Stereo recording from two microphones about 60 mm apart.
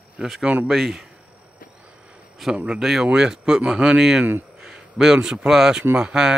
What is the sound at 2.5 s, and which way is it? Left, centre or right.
Speech, centre.